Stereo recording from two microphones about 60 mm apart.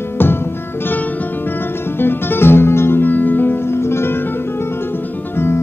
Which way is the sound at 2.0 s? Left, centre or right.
Left.